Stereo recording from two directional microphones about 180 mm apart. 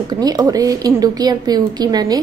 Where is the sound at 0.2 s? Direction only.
20° right (ahead or behind).